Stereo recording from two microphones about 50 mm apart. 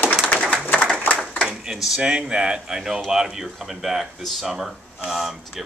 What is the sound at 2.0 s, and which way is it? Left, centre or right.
Speech, centre.